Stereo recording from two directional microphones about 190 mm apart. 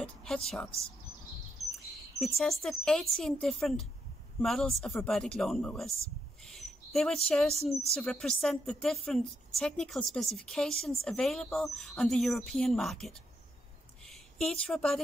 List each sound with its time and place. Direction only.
0.0 s speech: 5° left (ahead or behind)
2.1 s a woman's voice: centre (ahead or behind)
6.5 s bird: centre (ahead or behind)
7.2 s a woman's voice: 5° left (ahead or behind)
14.0 s a sound: centre (ahead or behind)